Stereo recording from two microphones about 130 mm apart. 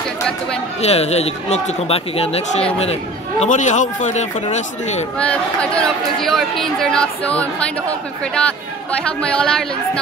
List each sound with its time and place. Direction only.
0.8 s speech: 55° left (ahead or behind)
3.4 s speech: 70° left (ahead or behind)
5.2 s speech: 10° left (ahead or behind)
9.2 s speech: 5° left (ahead or behind)